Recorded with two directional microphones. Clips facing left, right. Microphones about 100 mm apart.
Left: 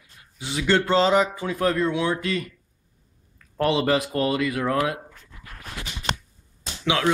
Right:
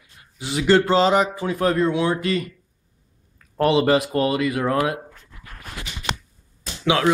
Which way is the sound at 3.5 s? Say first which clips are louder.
Right 4 dB; 5° right (ahead or behind).